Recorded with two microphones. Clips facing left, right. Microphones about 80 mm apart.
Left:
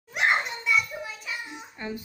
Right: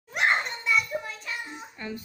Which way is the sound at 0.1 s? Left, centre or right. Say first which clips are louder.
Even; centre.